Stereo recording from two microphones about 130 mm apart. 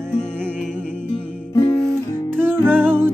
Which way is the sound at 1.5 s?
25° left (ahead or behind).